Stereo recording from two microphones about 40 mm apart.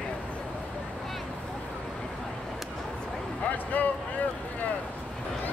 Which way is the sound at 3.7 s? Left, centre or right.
Left.